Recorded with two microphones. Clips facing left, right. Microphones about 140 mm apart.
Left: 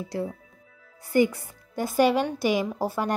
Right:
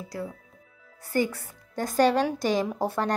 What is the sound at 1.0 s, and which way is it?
Speech, 15° left (ahead or behind).